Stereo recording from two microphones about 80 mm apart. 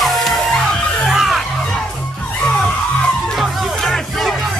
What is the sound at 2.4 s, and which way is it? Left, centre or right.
Music, centre.